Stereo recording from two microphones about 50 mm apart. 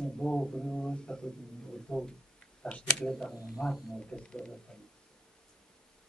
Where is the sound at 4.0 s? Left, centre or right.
Centre.